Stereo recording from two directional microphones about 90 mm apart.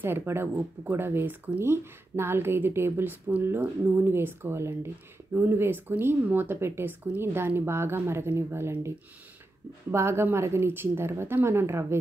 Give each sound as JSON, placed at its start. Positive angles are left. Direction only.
{"t": 0.0, "sound": "speech", "side_deg": -25}